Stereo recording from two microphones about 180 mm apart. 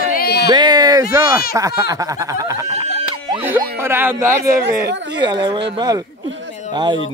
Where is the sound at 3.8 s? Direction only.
10° right (ahead or behind).